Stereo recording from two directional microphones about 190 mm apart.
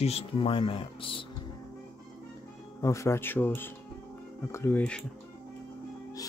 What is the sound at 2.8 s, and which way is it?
Speech, 15° left (ahead or behind).